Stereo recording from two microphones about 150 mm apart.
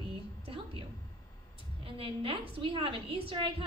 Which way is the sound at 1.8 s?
35° right (ahead or behind).